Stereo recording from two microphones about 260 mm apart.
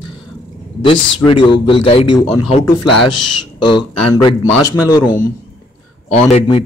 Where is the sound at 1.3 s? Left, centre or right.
Centre.